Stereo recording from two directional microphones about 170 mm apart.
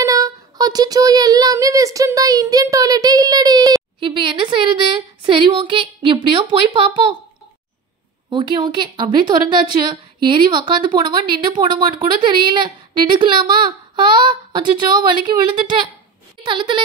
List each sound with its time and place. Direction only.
0.0 s a woman's voice: 20° right (ahead or behind)
8.3 s a woman's voice: 30° right (ahead or behind)